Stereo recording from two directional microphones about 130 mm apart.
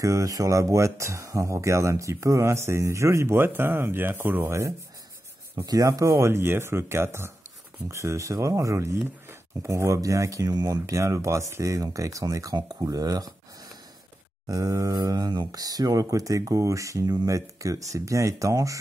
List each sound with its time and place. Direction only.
0.0 s speech: 25° right (ahead or behind)
14.5 s speech: 25° right (ahead or behind)